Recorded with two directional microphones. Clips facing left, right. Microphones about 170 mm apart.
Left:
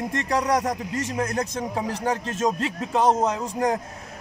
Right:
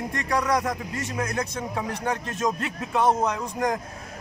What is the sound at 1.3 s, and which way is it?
A man's voice, 35° left (ahead or behind).